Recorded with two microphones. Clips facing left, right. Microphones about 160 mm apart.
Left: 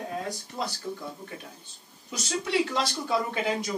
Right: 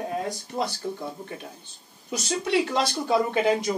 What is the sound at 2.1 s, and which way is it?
Speech, 20° right (ahead or behind).